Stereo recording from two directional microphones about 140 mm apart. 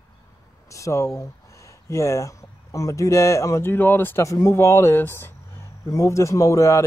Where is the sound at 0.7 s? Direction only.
20° left (ahead or behind).